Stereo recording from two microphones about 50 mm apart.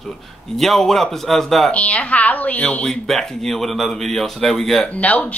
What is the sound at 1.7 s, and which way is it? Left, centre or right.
A woman's voice, left.